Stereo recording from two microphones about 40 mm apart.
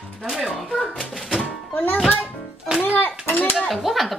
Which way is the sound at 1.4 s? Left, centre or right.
Left.